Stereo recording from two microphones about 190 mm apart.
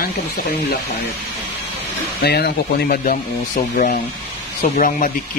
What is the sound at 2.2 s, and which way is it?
Speech, 55° left (ahead or behind).